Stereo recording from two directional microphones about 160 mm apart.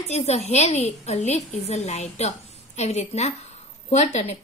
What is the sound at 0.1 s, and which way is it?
A woman's voice, 45° left (ahead or behind).